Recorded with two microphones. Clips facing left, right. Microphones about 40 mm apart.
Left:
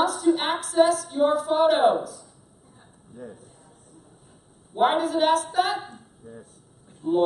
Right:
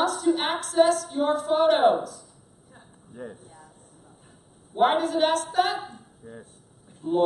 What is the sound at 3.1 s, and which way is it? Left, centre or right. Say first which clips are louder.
Speech: right 2 dB; right.